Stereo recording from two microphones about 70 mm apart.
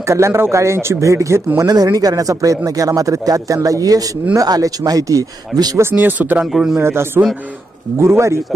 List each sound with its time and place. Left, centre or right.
0.0 s speech: right
1.6 s a man's voice: right
5.9 s speech: right
6.4 s a man's voice: centre
6.8 s a man's voice: right